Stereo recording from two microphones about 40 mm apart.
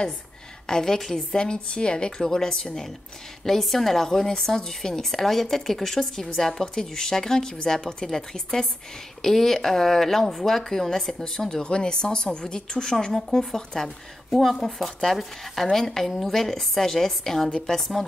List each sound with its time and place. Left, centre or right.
0.7 s a woman's voice: centre